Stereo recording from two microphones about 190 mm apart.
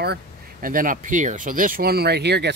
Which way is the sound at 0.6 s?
45° right (ahead or behind).